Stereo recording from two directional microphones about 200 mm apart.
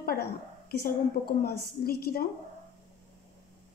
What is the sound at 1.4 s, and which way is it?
Speech, 50° left (ahead or behind).